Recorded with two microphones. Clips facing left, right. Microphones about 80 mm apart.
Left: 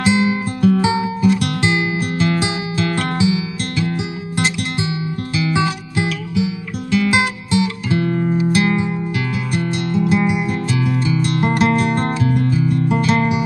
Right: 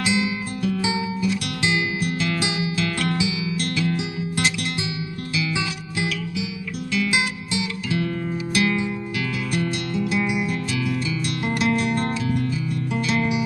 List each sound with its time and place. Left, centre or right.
0.0 s music: left